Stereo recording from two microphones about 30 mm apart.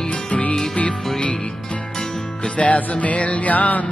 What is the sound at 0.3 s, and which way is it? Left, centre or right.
Music, left.